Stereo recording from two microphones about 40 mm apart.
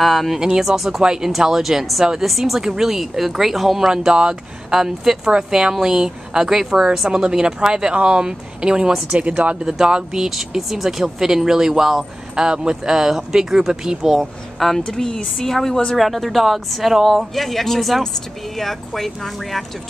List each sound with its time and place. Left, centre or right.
0.0 s speech: centre
0.4 s speech: centre
1.0 s speech: centre
3.9 s speech: right
9.1 s speech: right
9.7 s speech: centre
10.3 s speech: centre
14.9 s speech: centre
15.3 s speech: centre